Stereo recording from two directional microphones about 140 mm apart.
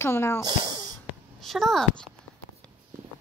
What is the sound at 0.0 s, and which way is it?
Speech, 20° left (ahead or behind).